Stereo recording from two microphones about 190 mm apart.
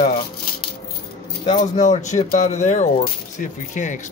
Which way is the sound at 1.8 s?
40° left (ahead or behind).